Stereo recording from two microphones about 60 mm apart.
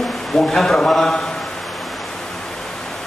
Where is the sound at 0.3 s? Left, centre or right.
Centre.